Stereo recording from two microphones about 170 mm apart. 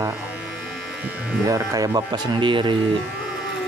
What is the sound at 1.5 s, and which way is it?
Speech, 20° right (ahead or behind).